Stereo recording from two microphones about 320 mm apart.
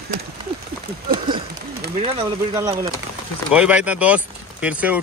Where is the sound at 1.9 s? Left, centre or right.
Centre.